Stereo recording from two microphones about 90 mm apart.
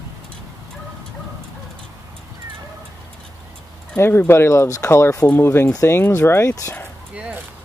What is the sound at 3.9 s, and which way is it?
Speech, 25° left (ahead or behind).